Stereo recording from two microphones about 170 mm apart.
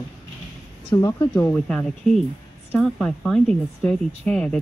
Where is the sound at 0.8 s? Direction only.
20° left (ahead or behind).